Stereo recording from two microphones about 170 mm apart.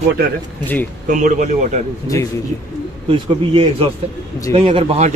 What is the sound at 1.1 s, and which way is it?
Speech, 45° right (ahead or behind).